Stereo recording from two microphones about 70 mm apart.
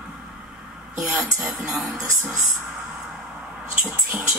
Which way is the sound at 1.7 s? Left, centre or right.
Centre.